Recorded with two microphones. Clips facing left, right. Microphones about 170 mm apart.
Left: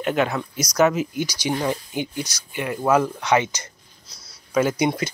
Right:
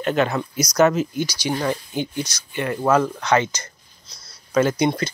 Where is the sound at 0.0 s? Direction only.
15° left (ahead or behind).